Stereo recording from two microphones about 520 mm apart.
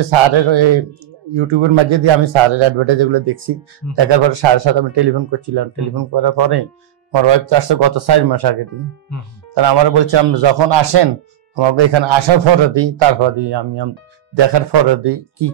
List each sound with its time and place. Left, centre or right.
0.0 s a man's voice: right